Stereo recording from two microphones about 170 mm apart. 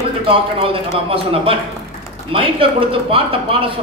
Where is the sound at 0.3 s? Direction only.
30° right (ahead or behind).